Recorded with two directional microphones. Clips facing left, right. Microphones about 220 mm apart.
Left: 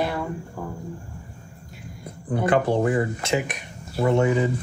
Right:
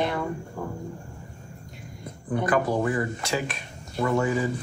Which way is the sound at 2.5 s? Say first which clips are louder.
Left 4 dB; 30° left (ahead or behind).